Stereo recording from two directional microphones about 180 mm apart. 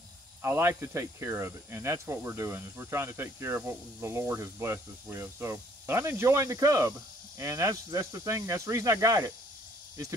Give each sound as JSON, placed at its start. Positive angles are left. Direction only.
{"t": 0.4, "sound": "speech", "side_deg": -15}